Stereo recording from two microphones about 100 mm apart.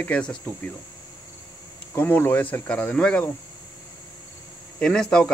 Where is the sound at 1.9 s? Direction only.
20° left (ahead or behind).